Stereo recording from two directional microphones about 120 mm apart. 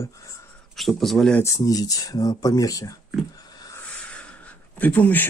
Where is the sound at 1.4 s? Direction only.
30° left (ahead or behind).